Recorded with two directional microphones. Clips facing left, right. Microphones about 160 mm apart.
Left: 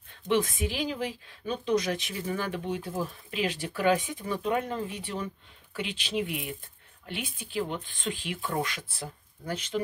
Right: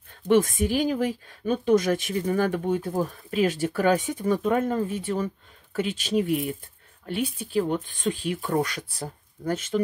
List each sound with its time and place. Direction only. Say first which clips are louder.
0.3 s speech: right 7 dB; 45° right (ahead or behind)